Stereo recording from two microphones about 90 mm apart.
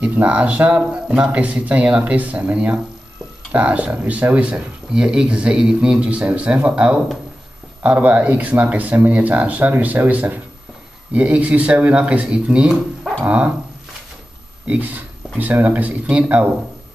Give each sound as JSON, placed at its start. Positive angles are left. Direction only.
{"t": 0.0, "sound": "speech", "side_deg": -15}
{"t": 14.7, "sound": "speech", "side_deg": -20}